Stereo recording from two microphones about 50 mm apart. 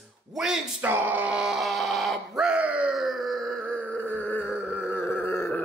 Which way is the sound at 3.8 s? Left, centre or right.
Left.